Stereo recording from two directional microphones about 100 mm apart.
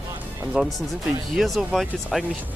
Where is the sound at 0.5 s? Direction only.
5° right (ahead or behind).